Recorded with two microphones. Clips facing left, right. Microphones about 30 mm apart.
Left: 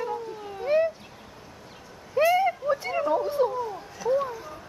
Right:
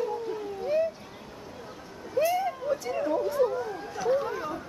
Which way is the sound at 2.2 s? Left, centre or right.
Left.